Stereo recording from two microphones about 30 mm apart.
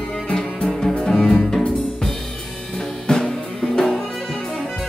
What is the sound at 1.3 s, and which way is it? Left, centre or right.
Music, centre.